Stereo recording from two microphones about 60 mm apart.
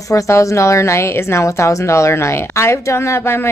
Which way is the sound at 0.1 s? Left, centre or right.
Left.